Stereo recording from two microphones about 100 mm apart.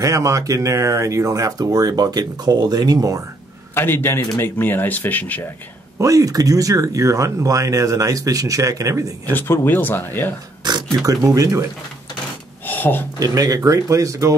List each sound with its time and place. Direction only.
0.0 s speech: 35° right (ahead or behind)
3.7 s speech: 20° left (ahead or behind)
5.9 s speech: 35° right (ahead or behind)
9.2 s speech: 20° left (ahead or behind)
10.6 s speech: 40° right (ahead or behind)
12.6 s a sound: 20° left (ahead or behind)
13.2 s speech: 35° right (ahead or behind)